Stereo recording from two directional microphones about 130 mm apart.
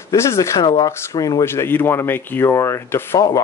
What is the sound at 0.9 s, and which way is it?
Speech, 20° left (ahead or behind).